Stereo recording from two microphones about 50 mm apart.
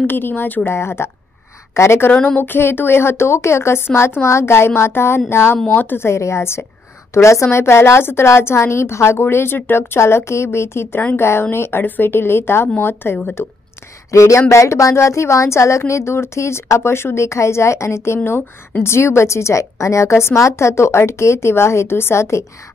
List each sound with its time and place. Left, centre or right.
0.0 s speech: left
0.7 s a woman's voice: left
2.2 s a woman's voice: left
4.2 s a woman's voice: left
5.9 s a woman's voice: left
7.2 s speech: left
7.5 s a woman's voice: left
14.1 s a woman's voice: left